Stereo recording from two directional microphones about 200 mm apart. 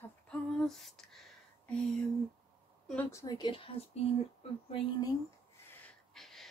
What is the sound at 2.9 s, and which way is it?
A woman's voice, 10° left (ahead or behind).